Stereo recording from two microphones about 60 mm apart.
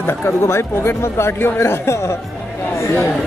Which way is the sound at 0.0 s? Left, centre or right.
Left.